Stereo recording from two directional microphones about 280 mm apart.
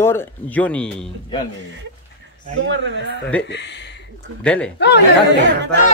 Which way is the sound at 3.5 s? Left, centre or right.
Left.